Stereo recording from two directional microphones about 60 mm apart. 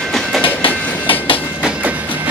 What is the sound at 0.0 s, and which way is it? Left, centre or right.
Train, centre.